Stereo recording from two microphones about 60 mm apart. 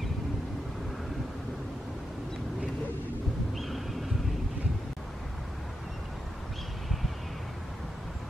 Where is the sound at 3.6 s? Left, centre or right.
Centre.